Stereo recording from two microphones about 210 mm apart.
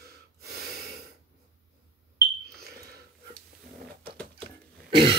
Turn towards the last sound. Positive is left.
turn(degrees=-25)  # may be behind; listen again after turning